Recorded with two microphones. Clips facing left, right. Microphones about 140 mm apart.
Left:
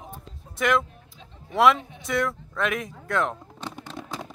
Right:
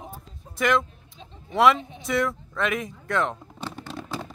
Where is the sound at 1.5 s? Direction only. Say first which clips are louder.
Even; centre (ahead or behind).